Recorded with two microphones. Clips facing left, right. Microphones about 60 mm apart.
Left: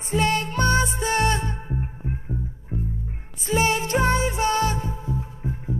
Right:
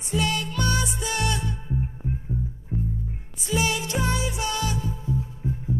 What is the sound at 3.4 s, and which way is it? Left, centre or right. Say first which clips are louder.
Music: left 4 dB; left.